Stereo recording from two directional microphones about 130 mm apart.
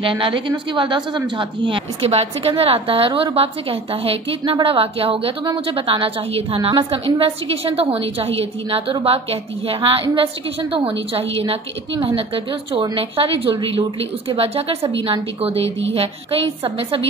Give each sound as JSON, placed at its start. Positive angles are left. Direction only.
{"t": 0.0, "sound": "a woman's voice", "side_deg": -40}
{"t": 12.7, "sound": "a woman's voice", "side_deg": -40}